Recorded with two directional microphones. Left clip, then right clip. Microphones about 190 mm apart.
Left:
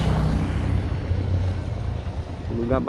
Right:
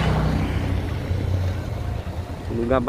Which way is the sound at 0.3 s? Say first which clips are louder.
Right 2 dB; 15° left (ahead or behind).